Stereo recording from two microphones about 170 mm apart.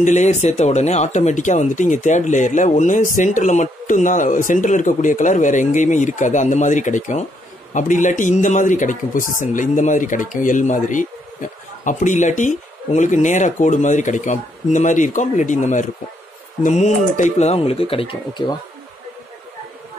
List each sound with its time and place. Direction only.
0.0 s speech: 45° left (ahead or behind)